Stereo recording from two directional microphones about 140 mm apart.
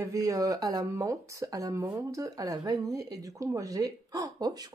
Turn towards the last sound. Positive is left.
turn(degrees=-30)  # may be behind; listen again after turning